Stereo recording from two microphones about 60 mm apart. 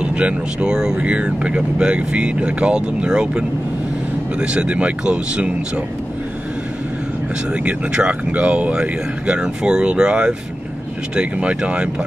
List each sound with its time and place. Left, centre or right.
0.0 s speech: centre
7.5 s speech: centre